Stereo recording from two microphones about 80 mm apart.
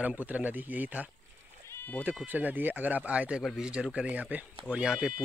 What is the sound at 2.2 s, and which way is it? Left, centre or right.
Speech, right.